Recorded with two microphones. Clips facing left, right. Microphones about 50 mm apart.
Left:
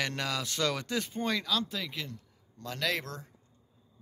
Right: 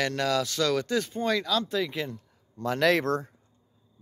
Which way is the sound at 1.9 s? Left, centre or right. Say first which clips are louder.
Right 7 dB; centre.